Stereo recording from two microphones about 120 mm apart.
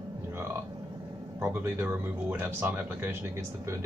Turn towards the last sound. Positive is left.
turn(degrees=-20)  # may be behind; listen again after turning